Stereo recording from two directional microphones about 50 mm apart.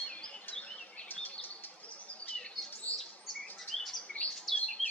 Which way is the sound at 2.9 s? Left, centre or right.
Left.